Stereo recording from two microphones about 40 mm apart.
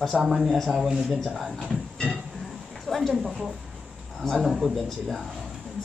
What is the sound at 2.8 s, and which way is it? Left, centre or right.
A woman's voice, centre.